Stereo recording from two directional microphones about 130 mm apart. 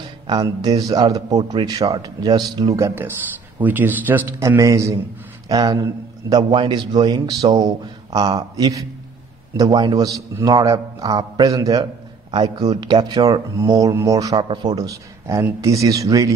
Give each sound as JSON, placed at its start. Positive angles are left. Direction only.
{"t": 0.3, "sound": "a man's voice", "side_deg": -30}
{"t": 4.4, "sound": "a man's voice", "side_deg": -25}